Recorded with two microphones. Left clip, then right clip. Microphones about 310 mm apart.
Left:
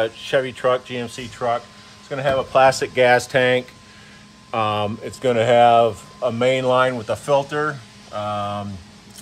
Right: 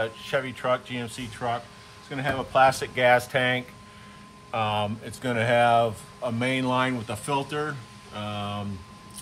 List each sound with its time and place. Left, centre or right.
0.0 s speech: left